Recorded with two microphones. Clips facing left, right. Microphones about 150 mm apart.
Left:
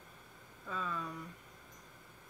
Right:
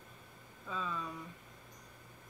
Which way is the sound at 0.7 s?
Centre (ahead or behind).